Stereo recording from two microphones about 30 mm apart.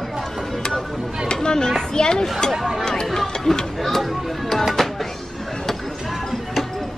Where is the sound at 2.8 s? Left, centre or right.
Left.